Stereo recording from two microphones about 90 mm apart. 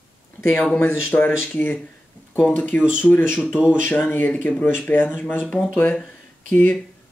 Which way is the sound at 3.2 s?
10° right (ahead or behind).